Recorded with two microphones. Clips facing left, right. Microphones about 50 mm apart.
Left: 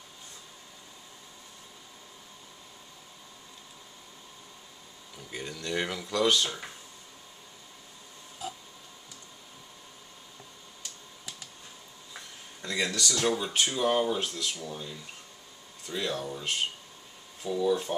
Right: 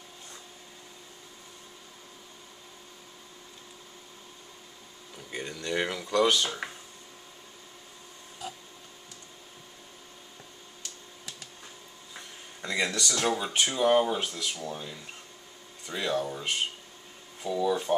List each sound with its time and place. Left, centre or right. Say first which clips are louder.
5.1 s speech: right 2 dB; centre
12.6 s speech: right 1 dB; centre
17.4 s speech: even; centre